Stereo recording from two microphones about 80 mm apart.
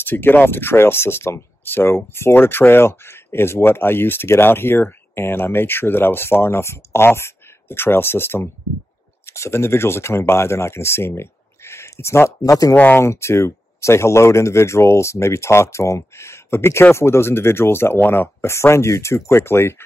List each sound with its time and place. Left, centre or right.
0.0 s speech: left
12.7 s speech: left
13.0 s speech: left